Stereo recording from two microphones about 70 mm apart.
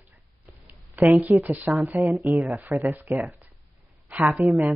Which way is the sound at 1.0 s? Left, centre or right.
Right.